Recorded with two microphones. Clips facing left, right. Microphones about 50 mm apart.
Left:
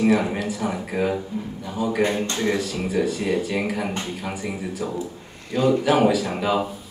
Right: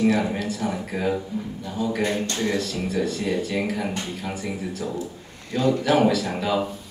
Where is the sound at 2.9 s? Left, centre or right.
Centre.